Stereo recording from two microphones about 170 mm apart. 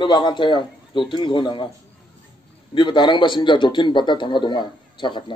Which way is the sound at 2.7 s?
25° left (ahead or behind).